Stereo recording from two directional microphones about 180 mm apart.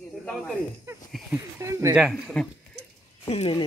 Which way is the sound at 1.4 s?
15° right (ahead or behind).